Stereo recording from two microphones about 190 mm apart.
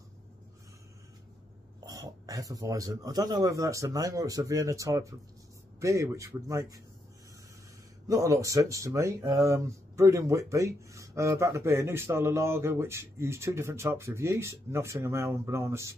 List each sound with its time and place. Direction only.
1.9 s speech: 15° right (ahead or behind)
8.1 s speech: 15° right (ahead or behind)